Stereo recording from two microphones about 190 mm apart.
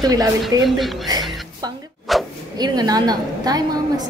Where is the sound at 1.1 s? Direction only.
20° right (ahead or behind).